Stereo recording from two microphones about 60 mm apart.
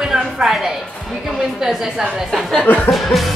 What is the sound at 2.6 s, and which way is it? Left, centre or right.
Speech, left.